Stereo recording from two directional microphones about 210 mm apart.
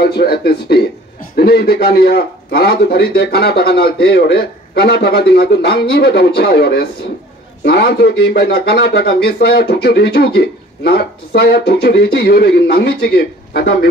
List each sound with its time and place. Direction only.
0.0 s speech: 50° left (ahead or behind)